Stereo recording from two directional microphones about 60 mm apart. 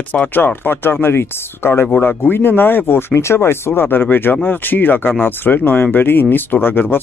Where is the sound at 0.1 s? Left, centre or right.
Left.